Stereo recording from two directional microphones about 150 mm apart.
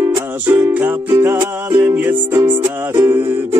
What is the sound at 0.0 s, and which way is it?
Music, 15° right (ahead or behind).